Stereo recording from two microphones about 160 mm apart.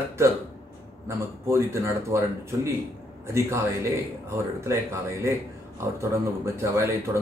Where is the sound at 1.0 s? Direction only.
15° right (ahead or behind).